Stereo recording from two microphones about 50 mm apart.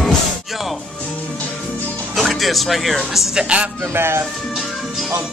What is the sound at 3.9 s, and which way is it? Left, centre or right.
Speech, right.